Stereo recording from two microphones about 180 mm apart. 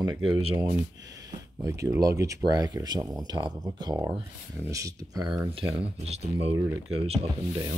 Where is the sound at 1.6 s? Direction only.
15° right (ahead or behind).